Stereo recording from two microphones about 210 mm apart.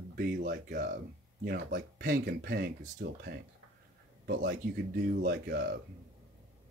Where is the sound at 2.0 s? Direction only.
45° right (ahead or behind).